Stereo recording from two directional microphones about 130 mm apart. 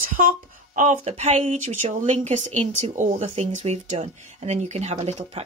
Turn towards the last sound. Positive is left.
turn(degrees=-55)  # may be behind; listen again after turning